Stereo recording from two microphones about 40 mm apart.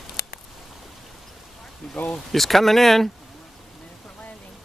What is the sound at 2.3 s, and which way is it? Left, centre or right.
Speech, centre.